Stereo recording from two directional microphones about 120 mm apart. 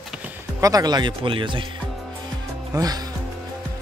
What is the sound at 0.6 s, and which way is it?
Speech, 30° right (ahead or behind).